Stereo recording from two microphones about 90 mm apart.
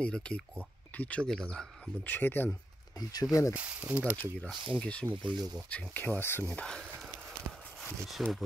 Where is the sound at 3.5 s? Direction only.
15° right (ahead or behind).